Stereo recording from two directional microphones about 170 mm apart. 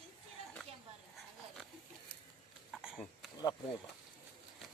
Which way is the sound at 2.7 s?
5° right (ahead or behind).